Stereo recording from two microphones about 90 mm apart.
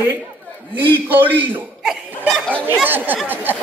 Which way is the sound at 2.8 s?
20° right (ahead or behind).